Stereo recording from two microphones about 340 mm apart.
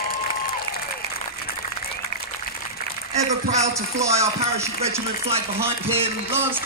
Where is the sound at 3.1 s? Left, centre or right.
Centre.